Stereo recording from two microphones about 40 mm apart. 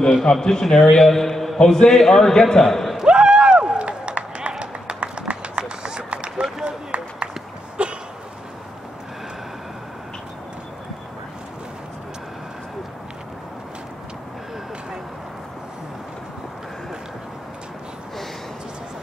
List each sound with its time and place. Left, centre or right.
0.2 s a man's voice: centre
3.1 s run: right
7.8 s a sound: right